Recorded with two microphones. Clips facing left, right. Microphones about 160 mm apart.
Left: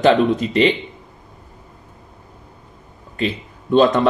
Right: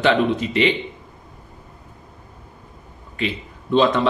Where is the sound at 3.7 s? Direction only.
50° left (ahead or behind).